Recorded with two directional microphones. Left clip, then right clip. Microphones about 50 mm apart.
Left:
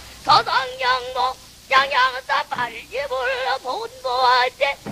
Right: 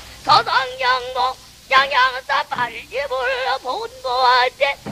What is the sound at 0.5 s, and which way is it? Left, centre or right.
Music, right.